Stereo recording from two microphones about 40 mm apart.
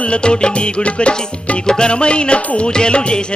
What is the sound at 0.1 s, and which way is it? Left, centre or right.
Music, left.